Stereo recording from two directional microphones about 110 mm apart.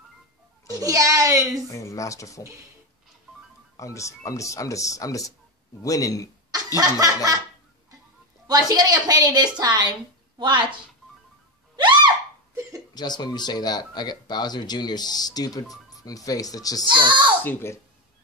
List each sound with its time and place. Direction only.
0.7 s a woman's voice: 30° right (ahead or behind)
1.7 s speech: 30° left (ahead or behind)
3.7 s speech: 30° left (ahead or behind)
6.5 s snicker: 35° right (ahead or behind)
8.5 s a woman's voice: 35° right (ahead or behind)
11.7 s a sound: 45° right (ahead or behind)
12.9 s speech: 40° left (ahead or behind)
16.9 s a child's voice: 45° right (ahead or behind)
17.4 s speech: 20° left (ahead or behind)